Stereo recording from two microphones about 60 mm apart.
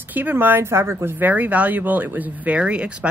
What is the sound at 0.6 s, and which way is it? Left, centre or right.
Speech, right.